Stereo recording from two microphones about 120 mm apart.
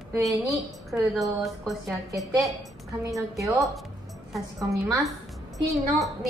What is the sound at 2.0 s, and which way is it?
A woman's voice, 30° right (ahead or behind).